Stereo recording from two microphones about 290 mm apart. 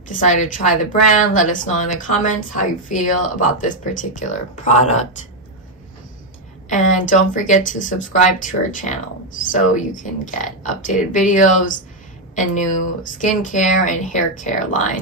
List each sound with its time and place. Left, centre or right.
0.1 s speech: left
6.7 s speech: left